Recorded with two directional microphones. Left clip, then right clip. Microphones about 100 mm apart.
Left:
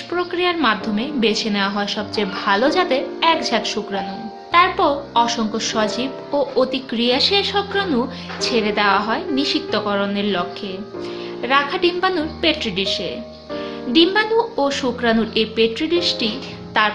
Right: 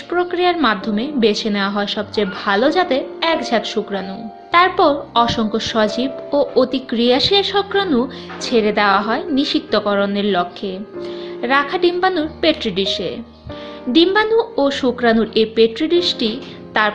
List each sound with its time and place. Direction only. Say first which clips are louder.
0.1 s a woman's voice: right 4 dB; 35° right (ahead or behind)
4.5 s a woman's voice: right 2 dB; 45° right (ahead or behind)